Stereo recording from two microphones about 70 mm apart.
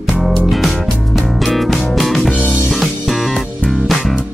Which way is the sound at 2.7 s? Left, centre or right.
Centre.